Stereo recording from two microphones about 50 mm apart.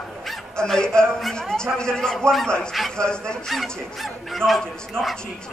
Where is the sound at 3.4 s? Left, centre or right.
Centre.